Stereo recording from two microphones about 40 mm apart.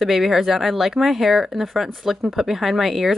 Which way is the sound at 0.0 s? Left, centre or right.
Centre.